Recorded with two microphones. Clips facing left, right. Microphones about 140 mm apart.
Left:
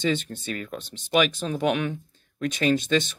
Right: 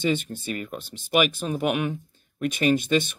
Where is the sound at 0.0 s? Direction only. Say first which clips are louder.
Right 1 dB; 10° right (ahead or behind).